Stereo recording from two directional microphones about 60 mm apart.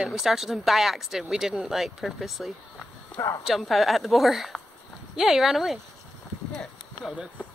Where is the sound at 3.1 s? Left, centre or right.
Left.